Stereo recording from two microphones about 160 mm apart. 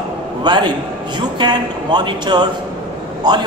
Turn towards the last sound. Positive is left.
turn(degrees=-25)  # may be behind; listen again after turning